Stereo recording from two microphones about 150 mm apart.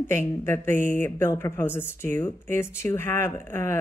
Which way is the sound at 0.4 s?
15° left (ahead or behind).